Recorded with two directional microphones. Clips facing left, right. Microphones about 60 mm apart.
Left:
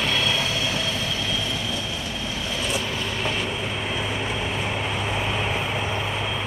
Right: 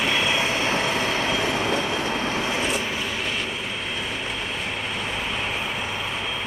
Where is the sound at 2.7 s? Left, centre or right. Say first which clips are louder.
Right 1 dB; centre.